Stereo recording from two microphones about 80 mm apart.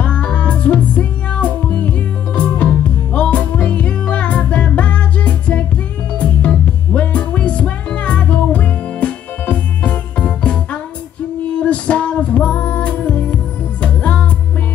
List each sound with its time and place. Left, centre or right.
0.0 s music: centre